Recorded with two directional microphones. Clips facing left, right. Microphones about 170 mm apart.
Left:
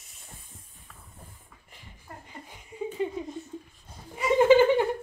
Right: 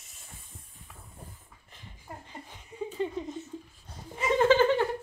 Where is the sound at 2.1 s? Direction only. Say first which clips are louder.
Right 1 dB; 15° right (ahead or behind).